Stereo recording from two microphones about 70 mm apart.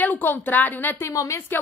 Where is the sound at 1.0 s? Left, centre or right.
Left.